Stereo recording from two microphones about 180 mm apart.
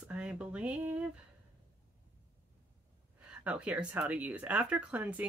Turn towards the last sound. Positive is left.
turn(degrees=-10)  # may be behind; listen again after turning